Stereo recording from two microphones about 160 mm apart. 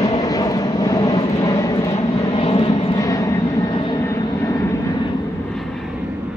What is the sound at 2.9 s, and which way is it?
Vehicle, 20° left (ahead or behind).